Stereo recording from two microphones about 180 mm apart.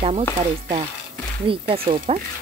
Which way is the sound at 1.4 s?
30° right (ahead or behind).